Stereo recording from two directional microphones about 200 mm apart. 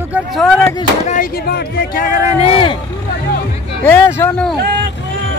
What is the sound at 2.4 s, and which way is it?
Speech, 25° left (ahead or behind).